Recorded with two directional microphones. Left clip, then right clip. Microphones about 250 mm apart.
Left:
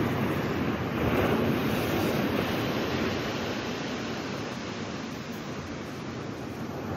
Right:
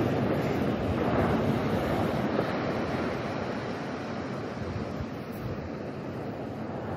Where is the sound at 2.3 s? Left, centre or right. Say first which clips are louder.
Even; left.